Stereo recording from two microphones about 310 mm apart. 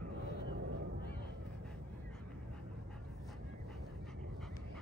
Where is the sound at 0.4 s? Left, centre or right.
Right.